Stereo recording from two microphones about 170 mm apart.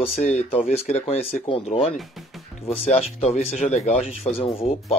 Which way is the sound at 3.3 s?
45° left (ahead or behind).